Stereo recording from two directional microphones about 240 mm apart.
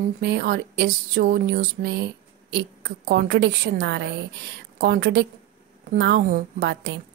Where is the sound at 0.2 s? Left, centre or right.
Right.